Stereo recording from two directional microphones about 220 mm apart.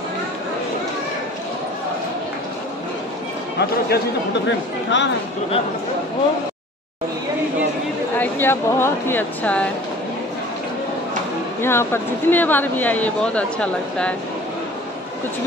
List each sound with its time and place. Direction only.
3.9 s speech: 55° left (ahead or behind)
8.2 s speech: 10° left (ahead or behind)
11.6 s speech: 10° left (ahead or behind)